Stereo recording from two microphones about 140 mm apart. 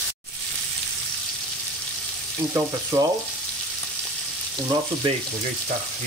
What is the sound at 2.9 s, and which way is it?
Frying, 20° right (ahead or behind).